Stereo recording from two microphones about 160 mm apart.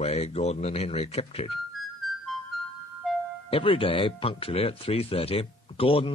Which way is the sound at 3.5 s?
35° left (ahead or behind).